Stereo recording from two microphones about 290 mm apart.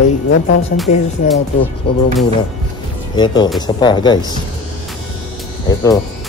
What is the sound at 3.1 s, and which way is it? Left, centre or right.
Speech, centre.